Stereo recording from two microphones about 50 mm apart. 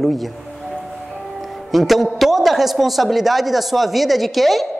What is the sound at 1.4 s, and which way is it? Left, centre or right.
A woman's voice, centre.